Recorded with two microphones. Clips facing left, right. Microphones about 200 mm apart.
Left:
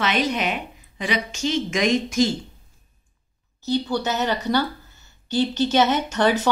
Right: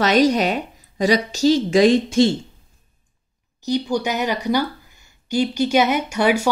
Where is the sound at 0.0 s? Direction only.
40° right (ahead or behind).